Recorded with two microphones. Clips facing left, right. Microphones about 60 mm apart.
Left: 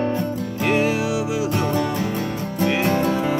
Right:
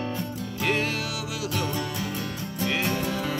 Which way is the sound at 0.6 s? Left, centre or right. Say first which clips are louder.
Left 7 dB; centre.